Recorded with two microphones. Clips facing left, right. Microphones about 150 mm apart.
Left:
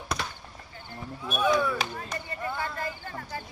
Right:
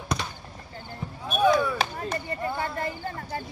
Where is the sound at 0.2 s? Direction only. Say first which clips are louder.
Even; 5° left (ahead or behind).